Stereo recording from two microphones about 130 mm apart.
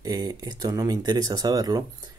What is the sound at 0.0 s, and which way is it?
Speech, 30° right (ahead or behind).